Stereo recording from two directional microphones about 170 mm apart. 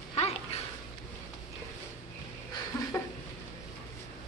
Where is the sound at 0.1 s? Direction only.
35° left (ahead or behind).